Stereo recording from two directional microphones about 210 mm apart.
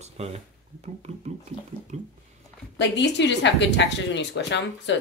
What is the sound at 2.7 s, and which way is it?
A woman's voice, 55° left (ahead or behind).